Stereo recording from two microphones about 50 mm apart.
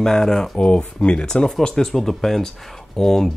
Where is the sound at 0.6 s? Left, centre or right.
Left.